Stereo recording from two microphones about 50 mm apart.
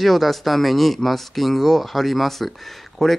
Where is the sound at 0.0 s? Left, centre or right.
Centre.